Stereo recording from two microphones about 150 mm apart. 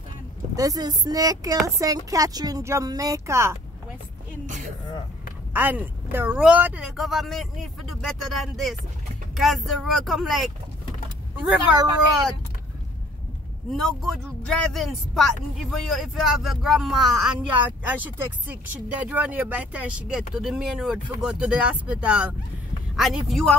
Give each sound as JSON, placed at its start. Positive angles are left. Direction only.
{"t": 0.6, "sound": "speech", "side_deg": -25}
{"t": 5.5, "sound": "speech", "side_deg": -10}
{"t": 13.7, "sound": "speech", "side_deg": 0}